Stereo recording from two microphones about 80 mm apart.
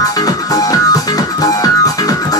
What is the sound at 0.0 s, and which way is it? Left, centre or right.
Music, left.